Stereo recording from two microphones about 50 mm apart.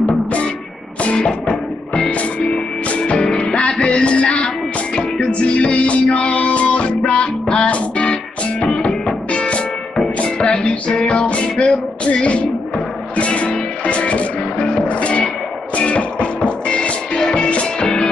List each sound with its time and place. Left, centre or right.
0.0 s music: left